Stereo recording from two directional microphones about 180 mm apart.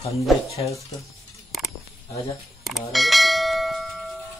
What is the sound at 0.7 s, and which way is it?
Stir, 15° left (ahead or behind).